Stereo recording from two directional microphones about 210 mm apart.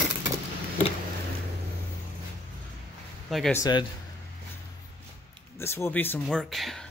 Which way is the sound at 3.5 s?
20° left (ahead or behind).